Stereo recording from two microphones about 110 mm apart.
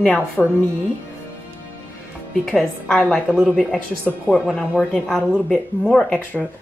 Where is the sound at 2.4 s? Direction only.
5° left (ahead or behind).